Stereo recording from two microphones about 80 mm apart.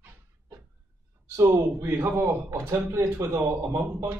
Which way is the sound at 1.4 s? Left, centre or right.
Right.